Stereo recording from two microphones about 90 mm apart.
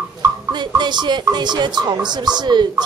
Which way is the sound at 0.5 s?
55° right (ahead or behind).